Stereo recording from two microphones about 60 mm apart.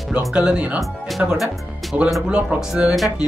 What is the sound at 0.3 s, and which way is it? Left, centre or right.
Music, centre.